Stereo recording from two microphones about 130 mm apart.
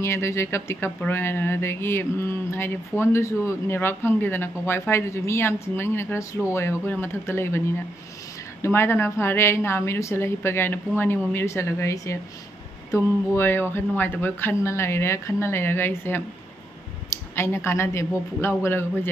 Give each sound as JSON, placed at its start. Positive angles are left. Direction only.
{"t": 0.0, "sound": "speech", "side_deg": 20}